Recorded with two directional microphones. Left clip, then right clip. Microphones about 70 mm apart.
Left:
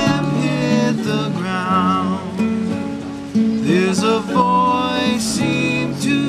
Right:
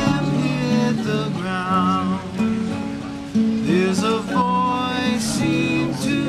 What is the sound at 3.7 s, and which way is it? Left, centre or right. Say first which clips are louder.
Music: left 4 dB; centre.